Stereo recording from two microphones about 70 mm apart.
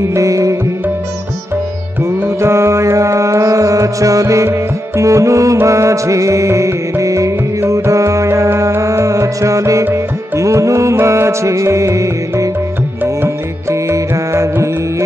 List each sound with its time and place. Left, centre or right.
0.0 s music: right
2.2 s music: right
13.0 s music: right
13.9 s music: right